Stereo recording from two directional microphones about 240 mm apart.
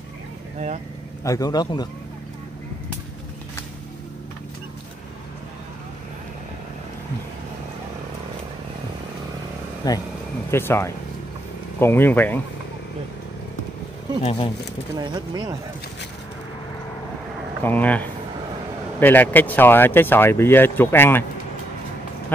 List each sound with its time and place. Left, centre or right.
1.2 s speech: centre
9.8 s speech: centre
14.2 s speech: left
15.0 s speech: centre
17.6 s speech: centre